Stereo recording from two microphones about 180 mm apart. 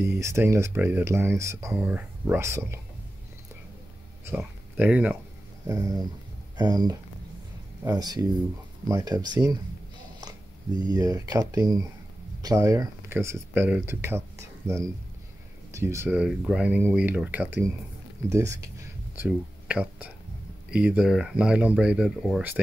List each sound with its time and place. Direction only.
0.0 s speech: 15° right (ahead or behind)
4.4 s speech: 5° right (ahead or behind)
5.7 s speech: 20° right (ahead or behind)